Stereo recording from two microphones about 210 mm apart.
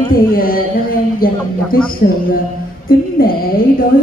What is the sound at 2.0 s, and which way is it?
Speech, 50° left (ahead or behind).